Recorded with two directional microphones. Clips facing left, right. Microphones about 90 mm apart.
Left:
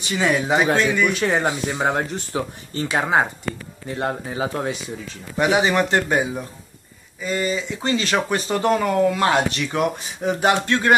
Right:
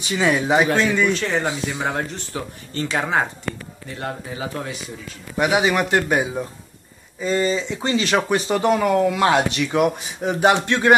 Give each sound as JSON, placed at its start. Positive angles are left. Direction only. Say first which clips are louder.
{"t": 0.2, "sound": "speech", "louder": "right 1 dB", "side_deg": -15}
{"t": 1.0, "sound": "speech", "louder": "left 1 dB", "side_deg": 15}
{"t": 4.0, "sound": "speech", "louder": "left 4 dB", "side_deg": 30}
{"t": 5.4, "sound": "speech", "louder": "even", "side_deg": -10}
{"t": 7.2, "sound": "speech", "louder": "right 3 dB", "side_deg": -30}